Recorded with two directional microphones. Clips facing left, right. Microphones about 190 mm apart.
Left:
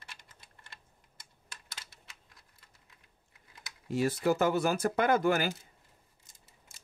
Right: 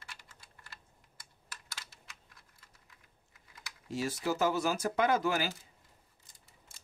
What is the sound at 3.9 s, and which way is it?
Speech, 55° left (ahead or behind).